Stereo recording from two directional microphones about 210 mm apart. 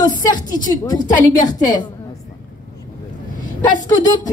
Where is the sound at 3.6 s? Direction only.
20° left (ahead or behind).